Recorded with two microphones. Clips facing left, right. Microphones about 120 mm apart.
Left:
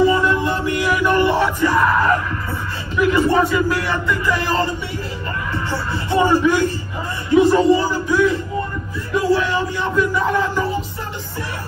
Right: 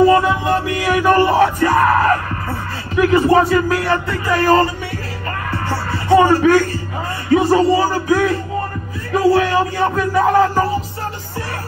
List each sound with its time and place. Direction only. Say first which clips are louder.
0.8 s music: right 3 dB; 45° right (ahead or behind)